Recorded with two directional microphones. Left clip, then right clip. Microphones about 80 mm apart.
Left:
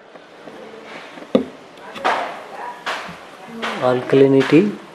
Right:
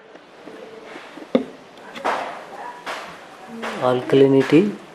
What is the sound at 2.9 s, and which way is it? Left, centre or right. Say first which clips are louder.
Music: left 5 dB; left.